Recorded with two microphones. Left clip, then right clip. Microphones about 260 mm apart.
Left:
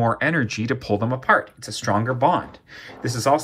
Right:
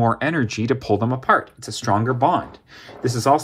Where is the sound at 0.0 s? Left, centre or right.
Right.